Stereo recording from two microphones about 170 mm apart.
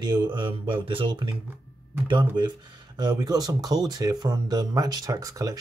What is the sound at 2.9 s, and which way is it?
Speech, 25° right (ahead or behind).